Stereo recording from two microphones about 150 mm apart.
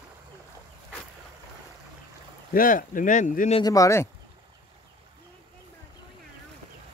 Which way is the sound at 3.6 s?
20° left (ahead or behind).